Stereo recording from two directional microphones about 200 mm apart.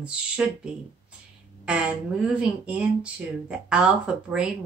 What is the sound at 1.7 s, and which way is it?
Speech, 5° right (ahead or behind).